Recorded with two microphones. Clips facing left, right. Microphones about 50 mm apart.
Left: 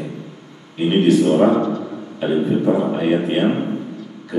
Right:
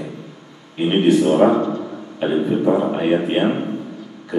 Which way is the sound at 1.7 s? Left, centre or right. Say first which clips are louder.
Left 1 dB; centre.